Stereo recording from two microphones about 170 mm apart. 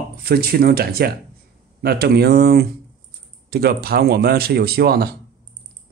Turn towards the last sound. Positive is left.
turn(degrees=-65)  # may be behind; listen again after turning